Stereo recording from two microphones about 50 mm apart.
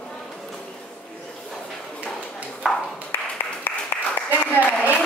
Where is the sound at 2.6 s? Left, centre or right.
Centre.